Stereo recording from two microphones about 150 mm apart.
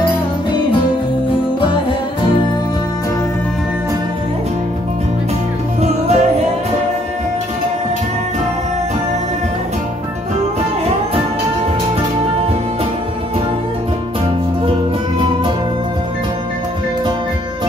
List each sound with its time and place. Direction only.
5.8 s music: 45° right (ahead or behind)